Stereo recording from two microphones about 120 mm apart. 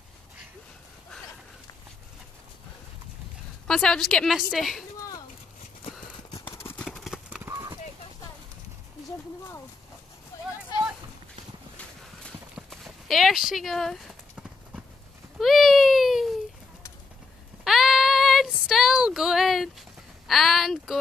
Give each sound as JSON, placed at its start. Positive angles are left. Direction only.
{"t": 3.6, "sound": "a woman's voice", "side_deg": 5}
{"t": 6.8, "sound": "clip-clop", "side_deg": 0}
{"t": 7.4, "sound": "clip-clop", "side_deg": -25}
{"t": 10.3, "sound": "a sound", "side_deg": 25}
{"t": 12.5, "sound": "clip-clop", "side_deg": 0}
{"t": 15.3, "sound": "baby cry", "side_deg": 0}
{"t": 17.6, "sound": "child singing", "side_deg": 0}
{"t": 20.2, "sound": "a sound", "side_deg": 0}